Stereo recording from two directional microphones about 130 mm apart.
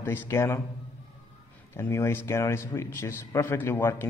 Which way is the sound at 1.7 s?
20° left (ahead or behind).